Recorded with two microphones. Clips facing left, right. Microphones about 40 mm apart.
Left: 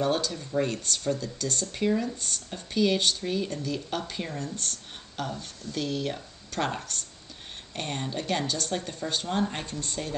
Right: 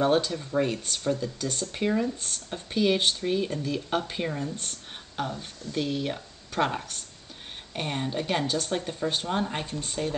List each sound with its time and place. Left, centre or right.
0.0 s speech: right